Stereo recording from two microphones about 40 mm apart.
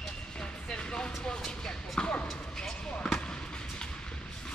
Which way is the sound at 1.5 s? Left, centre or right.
Left.